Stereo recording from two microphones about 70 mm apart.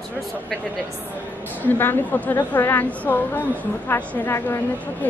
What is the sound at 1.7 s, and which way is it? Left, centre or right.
A woman's voice, left.